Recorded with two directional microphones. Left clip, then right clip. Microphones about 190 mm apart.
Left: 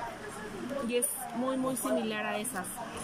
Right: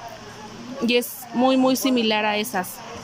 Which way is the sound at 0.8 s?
65° right (ahead or behind).